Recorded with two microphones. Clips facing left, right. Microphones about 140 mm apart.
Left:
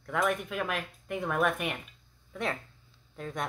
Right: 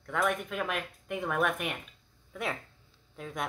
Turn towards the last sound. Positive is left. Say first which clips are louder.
# left 1 dB
turn(degrees=-5)  # may be behind; listen again after turning